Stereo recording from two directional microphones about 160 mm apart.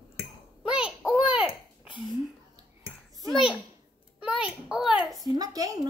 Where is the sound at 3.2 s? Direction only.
Centre (ahead or behind).